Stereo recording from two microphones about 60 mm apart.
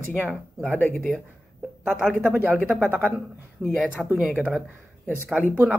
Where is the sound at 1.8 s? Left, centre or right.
Centre.